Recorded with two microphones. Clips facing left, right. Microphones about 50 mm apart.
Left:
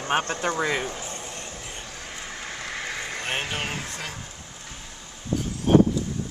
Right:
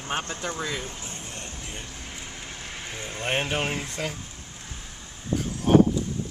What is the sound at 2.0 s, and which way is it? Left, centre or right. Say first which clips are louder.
Vehicle: left 3 dB; left.